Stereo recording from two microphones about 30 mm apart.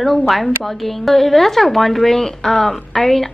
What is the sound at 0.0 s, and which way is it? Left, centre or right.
A woman's voice, centre.